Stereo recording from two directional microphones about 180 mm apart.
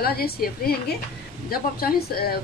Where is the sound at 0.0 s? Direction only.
60° left (ahead or behind).